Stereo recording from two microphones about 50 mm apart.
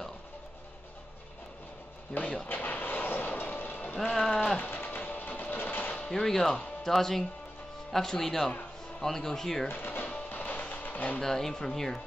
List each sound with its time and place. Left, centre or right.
2.4 s vehicle: left
4.0 s sheep: centre
4.6 s a sound: left
6.1 s speech: centre
9.7 s music: left
10.7 s a sound: left
11.1 s speech: centre